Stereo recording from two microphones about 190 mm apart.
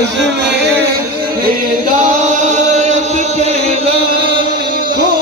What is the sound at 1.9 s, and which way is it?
Chant, 40° right (ahead or behind).